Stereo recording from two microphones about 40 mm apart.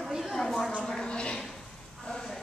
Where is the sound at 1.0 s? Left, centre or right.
Left.